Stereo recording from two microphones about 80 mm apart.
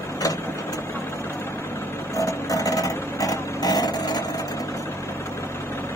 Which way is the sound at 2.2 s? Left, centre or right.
Left.